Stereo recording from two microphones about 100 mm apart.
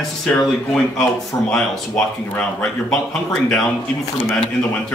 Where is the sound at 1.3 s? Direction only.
25° left (ahead or behind).